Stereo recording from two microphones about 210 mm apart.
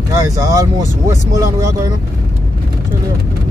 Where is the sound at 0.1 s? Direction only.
15° right (ahead or behind).